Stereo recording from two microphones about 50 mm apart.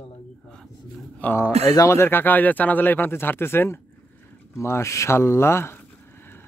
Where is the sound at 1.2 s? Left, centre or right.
Left.